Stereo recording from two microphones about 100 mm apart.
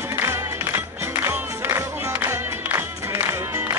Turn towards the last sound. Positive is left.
turn(degrees=-25)  # may be behind; listen again after turning